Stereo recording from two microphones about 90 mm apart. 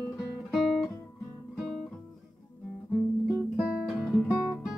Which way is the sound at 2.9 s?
5° right (ahead or behind).